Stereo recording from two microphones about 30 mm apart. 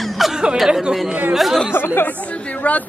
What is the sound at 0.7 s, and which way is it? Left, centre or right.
Speech, right.